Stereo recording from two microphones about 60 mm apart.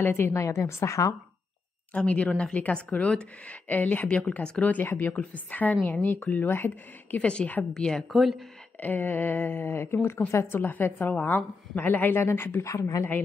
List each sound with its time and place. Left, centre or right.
0.0 s speech: left
0.4 s a woman's voice: left
2.0 s speech: left
4.8 s speech: left
5.1 s speech: left
7.2 s speech: left
7.7 s a woman's voice: centre
8.1 s speech: centre
8.7 s speech: left
12.6 s a woman's voice: left